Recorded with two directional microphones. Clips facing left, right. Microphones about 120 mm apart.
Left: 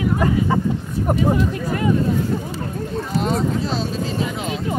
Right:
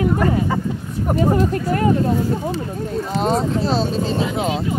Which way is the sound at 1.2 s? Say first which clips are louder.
Right 4 dB; 45° right (ahead or behind).